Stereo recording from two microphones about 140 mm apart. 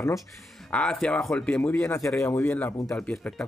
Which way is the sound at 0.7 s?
5° left (ahead or behind).